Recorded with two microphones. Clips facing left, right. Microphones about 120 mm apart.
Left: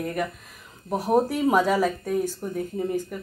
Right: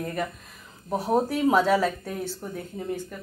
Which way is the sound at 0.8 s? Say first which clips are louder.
Left 2 dB; 10° left (ahead or behind).